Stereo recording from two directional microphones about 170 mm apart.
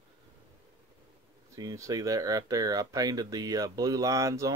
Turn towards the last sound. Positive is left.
turn(degrees=-20)  # may be behind; listen again after turning